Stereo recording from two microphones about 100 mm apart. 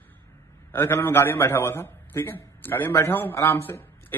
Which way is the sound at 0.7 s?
20° left (ahead or behind).